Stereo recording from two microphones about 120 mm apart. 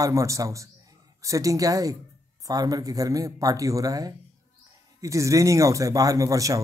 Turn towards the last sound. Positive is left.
turn(degrees=-30)  # may be behind; listen again after turning